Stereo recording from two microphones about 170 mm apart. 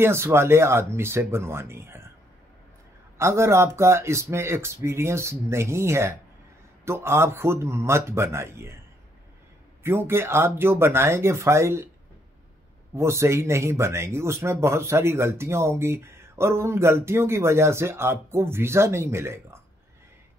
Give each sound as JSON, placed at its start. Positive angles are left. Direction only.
{"t": 0.0, "sound": "speech", "side_deg": -15}
{"t": 3.2, "sound": "speech", "side_deg": -15}
{"t": 9.8, "sound": "speech", "side_deg": -15}
{"t": 12.9, "sound": "speech", "side_deg": -15}